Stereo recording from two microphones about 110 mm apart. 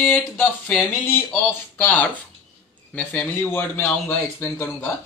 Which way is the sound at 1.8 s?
15° left (ahead or behind).